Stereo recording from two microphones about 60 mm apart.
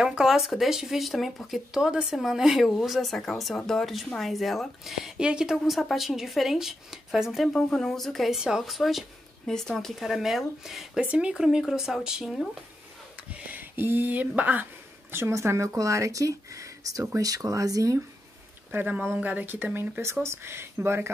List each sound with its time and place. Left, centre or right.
0.0 s speech: centre
5.2 s speech: centre
5.7 s speech: centre
7.4 s speech: centre
11.0 s speech: centre
13.5 s a woman's voice: right
15.3 s speech: right
17.2 s speech: right
18.7 s speech: right
20.0 s speech: right